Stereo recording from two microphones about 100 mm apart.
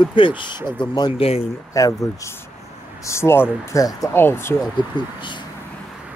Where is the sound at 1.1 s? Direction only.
80° left.